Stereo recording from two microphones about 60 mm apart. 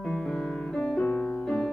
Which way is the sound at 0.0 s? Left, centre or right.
Centre.